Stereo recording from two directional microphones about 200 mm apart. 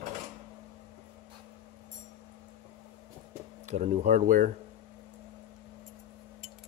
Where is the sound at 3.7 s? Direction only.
35° right (ahead or behind).